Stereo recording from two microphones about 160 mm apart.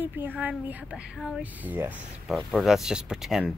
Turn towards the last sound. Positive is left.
turn(degrees=-5)  # may be behind; listen again after turning